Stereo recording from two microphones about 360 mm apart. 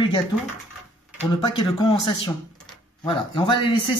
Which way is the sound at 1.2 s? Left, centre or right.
Centre.